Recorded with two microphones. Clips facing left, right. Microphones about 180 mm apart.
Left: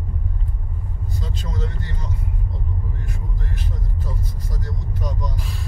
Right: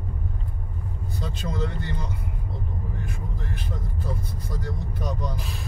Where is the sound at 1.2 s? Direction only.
60° right (ahead or behind).